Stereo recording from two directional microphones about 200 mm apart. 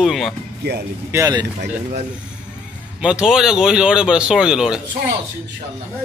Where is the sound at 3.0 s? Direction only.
5° right (ahead or behind).